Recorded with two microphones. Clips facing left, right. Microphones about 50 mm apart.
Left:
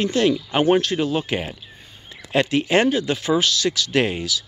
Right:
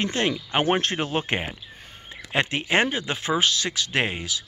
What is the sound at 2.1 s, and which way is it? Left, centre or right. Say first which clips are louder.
Speech: left 5 dB; right.